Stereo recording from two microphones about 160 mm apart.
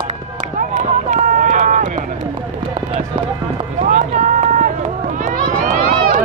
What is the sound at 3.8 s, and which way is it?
Run, 50° right (ahead or behind).